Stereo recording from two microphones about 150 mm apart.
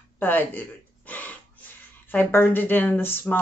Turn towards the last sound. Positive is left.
turn(degrees=15)  # may be behind; listen again after turning